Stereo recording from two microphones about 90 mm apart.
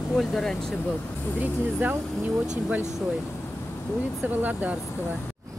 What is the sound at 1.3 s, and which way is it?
Speech, 20° right (ahead or behind).